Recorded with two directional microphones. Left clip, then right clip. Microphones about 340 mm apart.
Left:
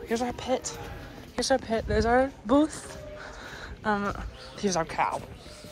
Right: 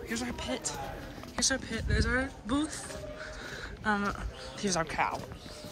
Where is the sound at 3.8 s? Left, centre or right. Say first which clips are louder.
Left 3 dB; centre.